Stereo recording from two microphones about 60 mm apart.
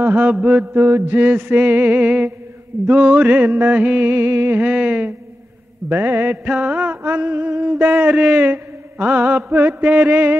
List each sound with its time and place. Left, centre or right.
0.0 s mantra: right
0.3 s music: right
0.7 s mantra: right
1.2 s music: right
4.6 s music: right
5.9 s a sound: right